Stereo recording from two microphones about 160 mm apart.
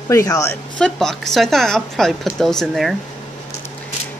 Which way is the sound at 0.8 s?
5° left (ahead or behind).